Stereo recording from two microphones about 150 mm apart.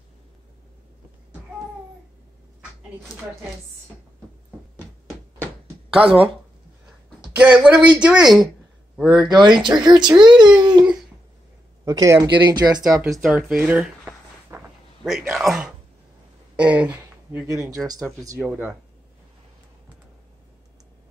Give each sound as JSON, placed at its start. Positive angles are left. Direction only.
{"t": 6.0, "sound": "speech", "side_deg": -10}
{"t": 9.2, "sound": "speech", "side_deg": -30}
{"t": 11.8, "sound": "speech", "side_deg": -25}
{"t": 13.2, "sound": "a sound", "side_deg": -5}
{"t": 15.0, "sound": "a man's voice", "side_deg": 0}
{"t": 17.6, "sound": "speech", "side_deg": -25}
{"t": 18.4, "sound": "speech", "side_deg": -15}